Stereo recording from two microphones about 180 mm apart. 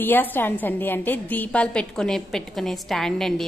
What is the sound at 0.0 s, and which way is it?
A woman's voice, 10° left (ahead or behind).